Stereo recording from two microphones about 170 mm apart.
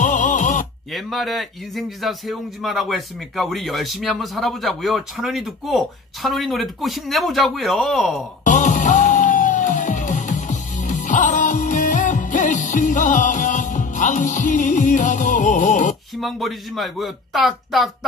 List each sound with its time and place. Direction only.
0.0 s a sound: 50° left (ahead or behind)
0.9 s speech: centre (ahead or behind)
8.5 s music: 45° left (ahead or behind)
16.2 s speech: centre (ahead or behind)